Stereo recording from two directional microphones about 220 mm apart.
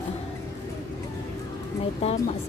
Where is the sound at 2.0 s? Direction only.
30° left (ahead or behind).